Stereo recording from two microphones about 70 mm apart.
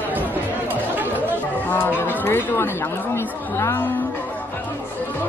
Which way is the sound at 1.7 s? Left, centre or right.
Left.